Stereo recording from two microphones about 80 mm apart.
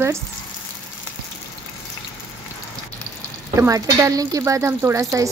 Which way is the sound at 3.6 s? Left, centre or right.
Right.